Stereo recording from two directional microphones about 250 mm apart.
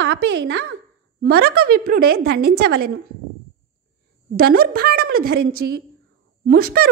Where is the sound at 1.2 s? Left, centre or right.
Right.